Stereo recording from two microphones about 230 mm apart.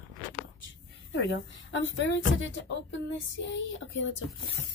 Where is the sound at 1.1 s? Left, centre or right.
Left.